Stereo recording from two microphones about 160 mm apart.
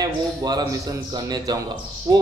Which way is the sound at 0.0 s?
25° right (ahead or behind).